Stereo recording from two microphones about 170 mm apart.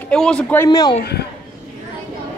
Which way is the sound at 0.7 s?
25° left (ahead or behind).